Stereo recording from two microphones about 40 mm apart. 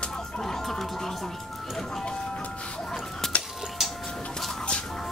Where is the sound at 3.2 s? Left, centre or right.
Centre.